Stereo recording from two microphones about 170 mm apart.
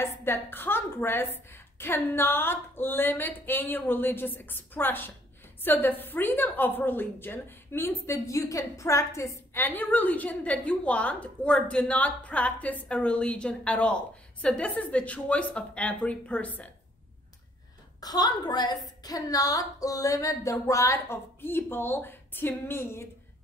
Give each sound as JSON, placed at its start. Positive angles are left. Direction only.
{"t": 0.0, "sound": "a woman's voice", "side_deg": 15}
{"t": 18.0, "sound": "a woman's voice", "side_deg": 25}